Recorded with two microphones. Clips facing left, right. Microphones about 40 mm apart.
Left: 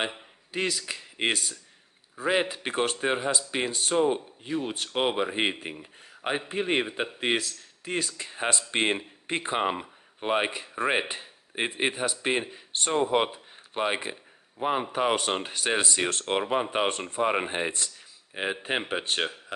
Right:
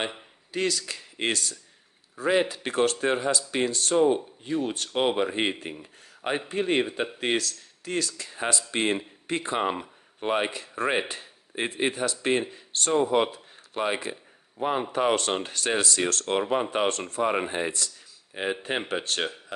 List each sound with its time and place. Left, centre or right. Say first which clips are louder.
0.5 s speech: right 2 dB; centre
9.7 s speech: even; centre
17.6 s speech: right 1 dB; left
18.3 s speech: even; centre